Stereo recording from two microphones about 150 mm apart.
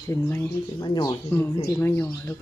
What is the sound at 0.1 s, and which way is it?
Speech, 15° left (ahead or behind).